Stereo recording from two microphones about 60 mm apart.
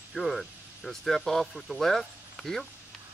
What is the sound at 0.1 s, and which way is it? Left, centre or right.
Speech, centre.